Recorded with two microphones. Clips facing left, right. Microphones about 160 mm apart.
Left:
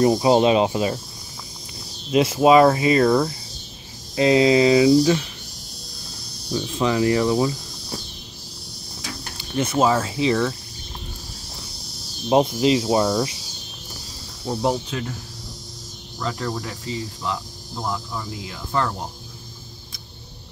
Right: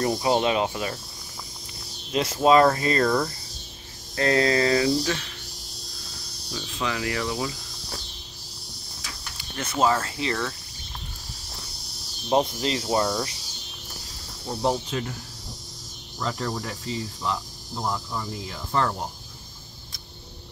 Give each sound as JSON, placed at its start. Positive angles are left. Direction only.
{"t": 0.0, "sound": "speech", "side_deg": 20}
{"t": 2.1, "sound": "speech", "side_deg": 10}
{"t": 6.5, "sound": "speech", "side_deg": 20}
{"t": 9.8, "sound": "speech", "side_deg": 10}
{"t": 12.3, "sound": "speech", "side_deg": 15}
{"t": 14.5, "sound": "speech", "side_deg": 5}
{"t": 16.2, "sound": "speech", "side_deg": 0}